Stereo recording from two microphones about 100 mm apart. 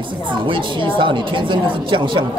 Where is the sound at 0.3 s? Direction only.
55° right (ahead or behind).